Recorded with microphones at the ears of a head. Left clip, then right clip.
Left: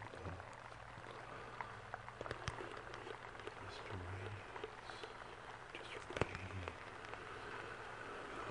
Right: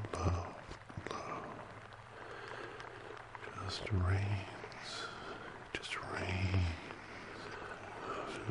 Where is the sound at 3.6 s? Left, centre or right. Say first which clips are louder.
Right 8 dB; right.